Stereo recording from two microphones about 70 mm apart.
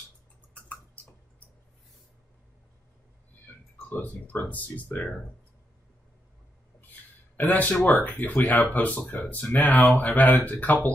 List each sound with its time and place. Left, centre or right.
3.9 s speech: left
7.3 s speech: left